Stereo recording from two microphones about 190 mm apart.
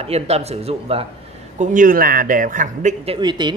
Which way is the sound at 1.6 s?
45° right (ahead or behind).